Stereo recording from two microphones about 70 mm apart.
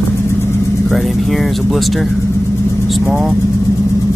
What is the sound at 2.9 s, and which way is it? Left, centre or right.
Speech, centre.